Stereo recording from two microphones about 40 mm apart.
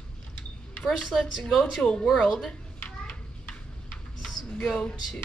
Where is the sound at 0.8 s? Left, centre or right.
Centre.